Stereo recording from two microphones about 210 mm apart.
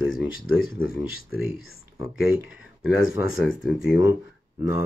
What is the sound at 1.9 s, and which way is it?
Speech, 5° right (ahead or behind).